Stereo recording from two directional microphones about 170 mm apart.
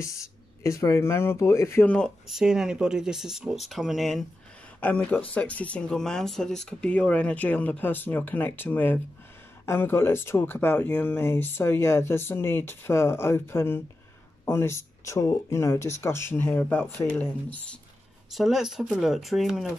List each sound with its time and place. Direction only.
0.0 s speech: 15° left (ahead or behind)
2.2 s speech: 5° right (ahead or behind)
18.3 s speech: centre (ahead or behind)